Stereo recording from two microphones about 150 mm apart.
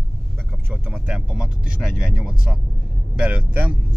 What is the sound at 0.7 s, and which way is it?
Speech, 5° right (ahead or behind).